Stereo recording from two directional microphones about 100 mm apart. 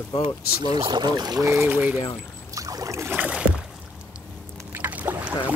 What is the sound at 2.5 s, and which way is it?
Boat, 35° right (ahead or behind).